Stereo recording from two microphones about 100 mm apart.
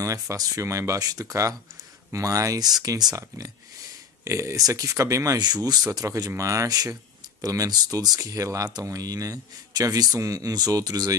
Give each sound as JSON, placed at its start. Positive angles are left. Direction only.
{"t": 0.0, "sound": "speech", "side_deg": -35}